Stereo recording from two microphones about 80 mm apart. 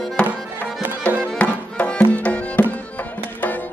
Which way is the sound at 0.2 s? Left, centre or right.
Centre.